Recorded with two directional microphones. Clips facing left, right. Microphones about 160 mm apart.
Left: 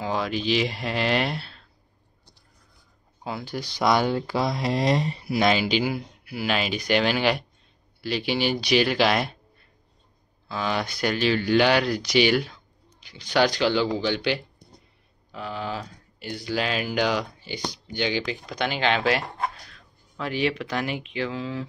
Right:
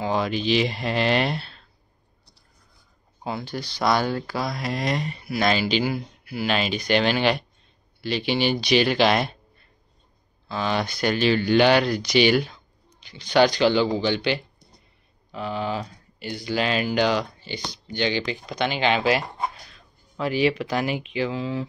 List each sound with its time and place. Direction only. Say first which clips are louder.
0.0 s speech: right 2 dB; centre (ahead or behind)
3.3 s speech: right 1 dB; 5° left (ahead or behind); by 5.4 s 30° left (ahead or behind)
5.4 s speech: even; 15° left (ahead or behind)
10.5 s speech: right 2 dB; 5° left (ahead or behind)